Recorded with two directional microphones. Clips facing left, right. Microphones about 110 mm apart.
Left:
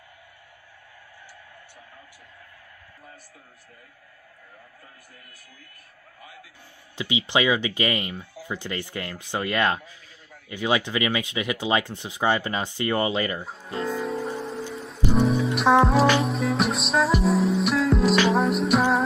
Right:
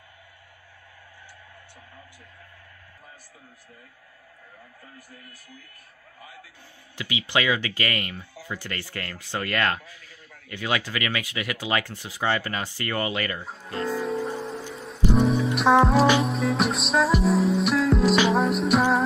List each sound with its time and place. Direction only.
7.0 s speech: 20° left (ahead or behind)
13.4 s music: centre (ahead or behind)